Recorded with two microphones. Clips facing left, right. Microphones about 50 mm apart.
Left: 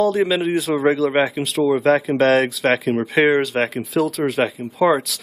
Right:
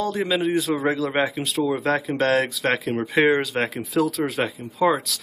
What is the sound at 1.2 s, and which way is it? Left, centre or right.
Speech, centre.